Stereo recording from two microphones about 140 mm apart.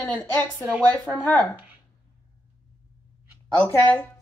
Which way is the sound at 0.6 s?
10° right (ahead or behind).